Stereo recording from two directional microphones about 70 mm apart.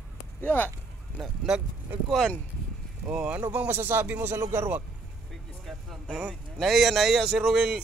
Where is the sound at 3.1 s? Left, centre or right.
Centre.